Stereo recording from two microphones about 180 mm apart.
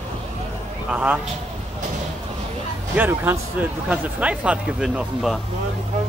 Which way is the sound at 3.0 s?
10° right (ahead or behind).